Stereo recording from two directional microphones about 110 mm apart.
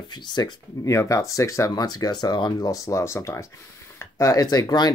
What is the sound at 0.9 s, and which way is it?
Speech, 30° left (ahead or behind).